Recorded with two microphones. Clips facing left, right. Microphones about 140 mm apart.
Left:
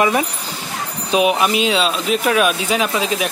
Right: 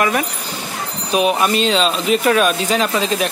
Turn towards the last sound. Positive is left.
turn(degrees=5)  # may be behind; listen again after turning